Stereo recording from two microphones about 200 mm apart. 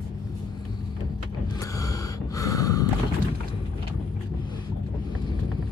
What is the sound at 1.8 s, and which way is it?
Snort, 15° left (ahead or behind).